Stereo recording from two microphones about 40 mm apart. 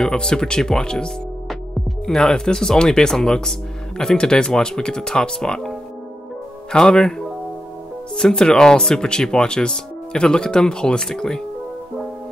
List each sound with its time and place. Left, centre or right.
0.0 s speech: centre
6.8 s speech: centre